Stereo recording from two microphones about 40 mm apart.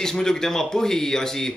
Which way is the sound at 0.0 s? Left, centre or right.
Centre.